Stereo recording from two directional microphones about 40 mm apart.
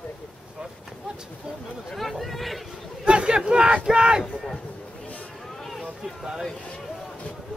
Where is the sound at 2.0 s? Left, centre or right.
Centre.